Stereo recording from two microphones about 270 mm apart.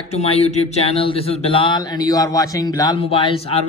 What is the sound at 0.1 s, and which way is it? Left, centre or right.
Speech, left.